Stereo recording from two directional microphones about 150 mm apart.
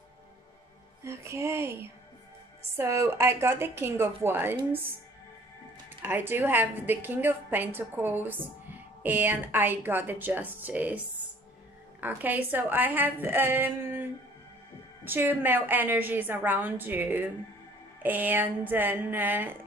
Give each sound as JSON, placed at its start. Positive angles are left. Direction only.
{"t": 1.0, "sound": "a woman's voice", "side_deg": -20}
{"t": 5.9, "sound": "a woman's voice", "side_deg": -15}
{"t": 12.0, "sound": "a woman's voice", "side_deg": -10}
{"t": 15.0, "sound": "a woman's voice", "side_deg": -15}